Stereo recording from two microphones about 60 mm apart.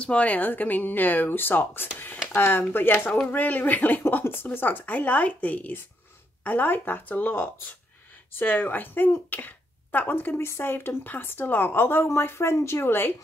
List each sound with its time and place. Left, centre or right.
0.0 s a woman's voice: left